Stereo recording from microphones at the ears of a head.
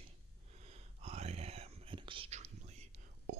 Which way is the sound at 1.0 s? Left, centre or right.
Right.